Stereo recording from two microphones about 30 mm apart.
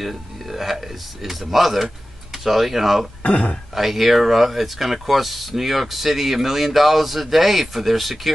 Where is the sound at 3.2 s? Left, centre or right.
Left.